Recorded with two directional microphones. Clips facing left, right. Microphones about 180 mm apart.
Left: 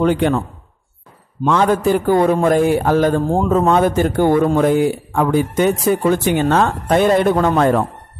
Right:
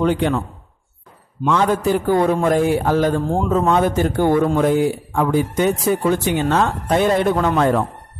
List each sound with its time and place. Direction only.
0.0 s a man's voice: 55° left (ahead or behind)
1.4 s a man's voice: 55° left (ahead or behind)